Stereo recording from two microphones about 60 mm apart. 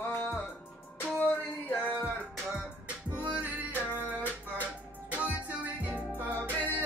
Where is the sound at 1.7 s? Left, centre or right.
Left.